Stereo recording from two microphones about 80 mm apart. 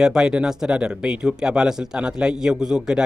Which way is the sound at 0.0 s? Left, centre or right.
Centre.